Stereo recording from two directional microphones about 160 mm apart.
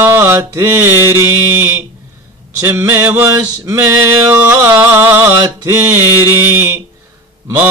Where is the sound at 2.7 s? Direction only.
15° right (ahead or behind).